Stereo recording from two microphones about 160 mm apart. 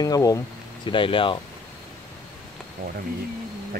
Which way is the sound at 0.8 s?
30° left (ahead or behind).